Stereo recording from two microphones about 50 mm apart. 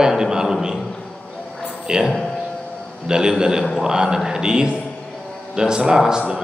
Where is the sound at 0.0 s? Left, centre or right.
Centre.